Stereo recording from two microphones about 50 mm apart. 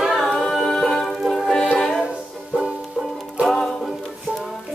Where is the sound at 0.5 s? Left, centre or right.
Centre.